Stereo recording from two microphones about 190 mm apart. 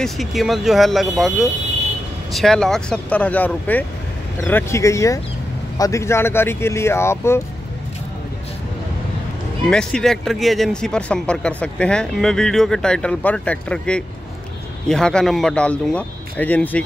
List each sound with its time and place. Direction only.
0.0 s speech: centre (ahead or behind)
9.7 s speech: 5° left (ahead or behind)